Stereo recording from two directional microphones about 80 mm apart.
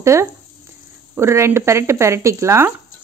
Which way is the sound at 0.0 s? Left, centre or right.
Right.